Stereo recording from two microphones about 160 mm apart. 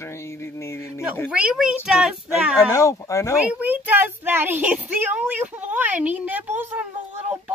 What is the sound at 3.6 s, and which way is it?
Speech, 10° right (ahead or behind).